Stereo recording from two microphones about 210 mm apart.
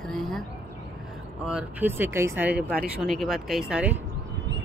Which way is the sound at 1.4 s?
5° right (ahead or behind).